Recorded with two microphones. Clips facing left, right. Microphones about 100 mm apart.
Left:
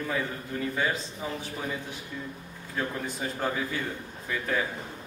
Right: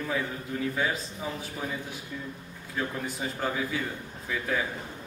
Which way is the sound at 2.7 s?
5° right (ahead or behind).